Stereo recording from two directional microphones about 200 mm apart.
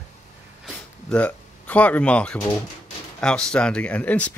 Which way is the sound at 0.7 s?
5° left (ahead or behind).